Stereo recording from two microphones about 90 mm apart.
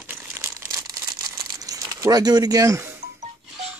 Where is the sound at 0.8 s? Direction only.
45° right (ahead or behind).